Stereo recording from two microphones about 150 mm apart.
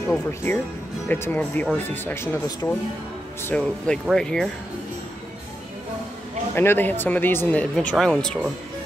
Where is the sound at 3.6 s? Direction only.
5° left (ahead or behind).